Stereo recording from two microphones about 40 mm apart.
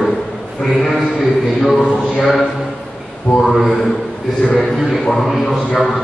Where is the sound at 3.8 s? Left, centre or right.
Centre.